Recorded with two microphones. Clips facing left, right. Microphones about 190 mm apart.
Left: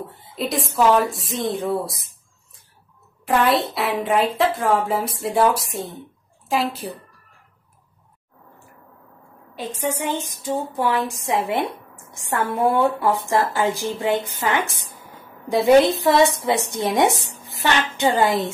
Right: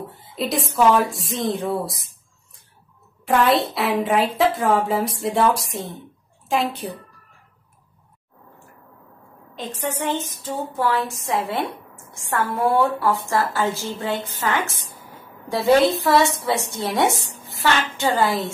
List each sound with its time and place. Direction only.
0.2 s a woman's voice: centre (ahead or behind)
3.3 s a woman's voice: centre (ahead or behind)
9.6 s a woman's voice: 10° left (ahead or behind)